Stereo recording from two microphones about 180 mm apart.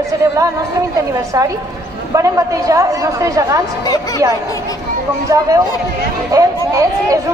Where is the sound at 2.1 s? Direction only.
20° right (ahead or behind).